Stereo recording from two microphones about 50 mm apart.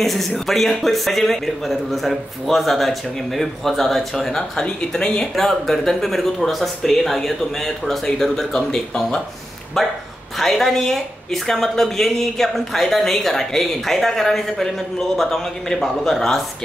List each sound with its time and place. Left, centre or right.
0.0 s speech: centre
4.6 s speech: centre
5.3 s speech: centre